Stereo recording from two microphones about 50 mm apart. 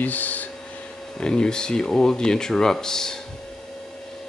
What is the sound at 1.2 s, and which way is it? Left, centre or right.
Speech, centre.